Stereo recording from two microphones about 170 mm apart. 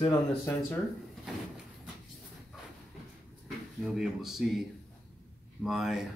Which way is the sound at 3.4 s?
Centre (ahead or behind).